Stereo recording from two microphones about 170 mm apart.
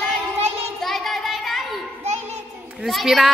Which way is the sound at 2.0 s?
40° right (ahead or behind).